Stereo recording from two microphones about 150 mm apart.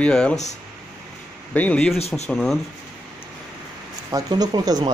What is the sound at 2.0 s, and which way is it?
Speech, 45° left (ahead or behind).